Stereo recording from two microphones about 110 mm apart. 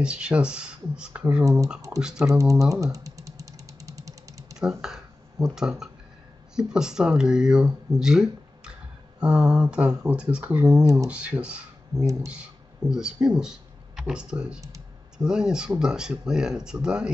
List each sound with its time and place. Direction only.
0.0 s speech: 10° right (ahead or behind)
2.6 s a sound: 30° right (ahead or behind)
4.6 s speech: 5° right (ahead or behind)